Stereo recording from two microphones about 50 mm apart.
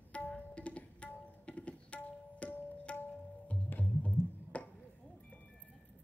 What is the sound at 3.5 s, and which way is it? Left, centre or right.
Music, left.